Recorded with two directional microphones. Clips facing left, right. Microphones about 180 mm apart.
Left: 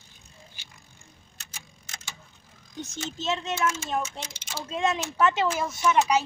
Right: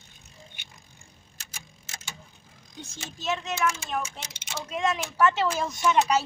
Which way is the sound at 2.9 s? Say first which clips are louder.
Left 1 dB; 25° left (ahead or behind).